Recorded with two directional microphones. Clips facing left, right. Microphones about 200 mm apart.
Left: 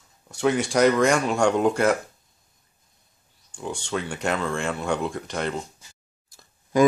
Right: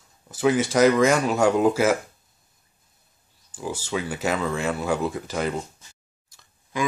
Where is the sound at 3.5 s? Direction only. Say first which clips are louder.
Right 1 dB; 5° right (ahead or behind).